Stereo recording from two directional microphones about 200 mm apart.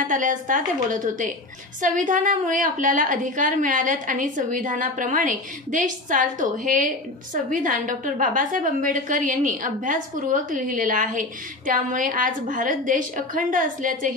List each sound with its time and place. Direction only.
0.0 s a woman's voice: 40° right (ahead or behind)